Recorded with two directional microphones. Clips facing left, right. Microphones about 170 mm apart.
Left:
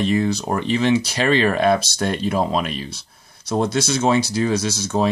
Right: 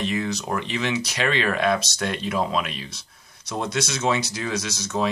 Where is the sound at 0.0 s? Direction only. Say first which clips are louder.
Left 6 dB; 35° left (ahead or behind).